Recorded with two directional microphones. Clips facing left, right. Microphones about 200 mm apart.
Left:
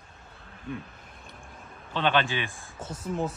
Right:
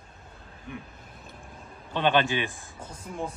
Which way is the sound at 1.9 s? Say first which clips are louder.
Right 2 dB; 15° right (ahead or behind).